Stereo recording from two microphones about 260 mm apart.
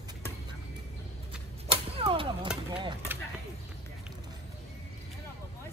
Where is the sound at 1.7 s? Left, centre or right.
Right.